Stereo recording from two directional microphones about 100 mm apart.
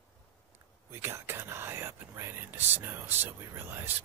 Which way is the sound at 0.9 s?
25° right (ahead or behind).